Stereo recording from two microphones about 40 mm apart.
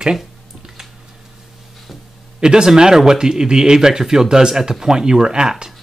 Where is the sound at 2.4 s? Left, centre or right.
Centre.